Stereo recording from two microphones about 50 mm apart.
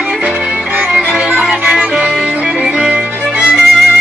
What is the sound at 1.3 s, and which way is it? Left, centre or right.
Music, right.